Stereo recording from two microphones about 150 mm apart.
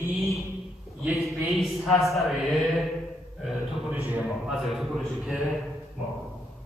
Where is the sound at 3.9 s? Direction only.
10° right (ahead or behind).